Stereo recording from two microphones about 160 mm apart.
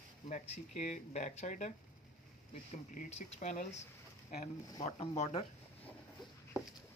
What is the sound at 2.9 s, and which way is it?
Speech, 50° left (ahead or behind).